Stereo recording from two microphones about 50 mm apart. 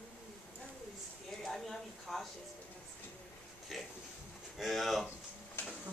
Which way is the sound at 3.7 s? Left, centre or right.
Centre.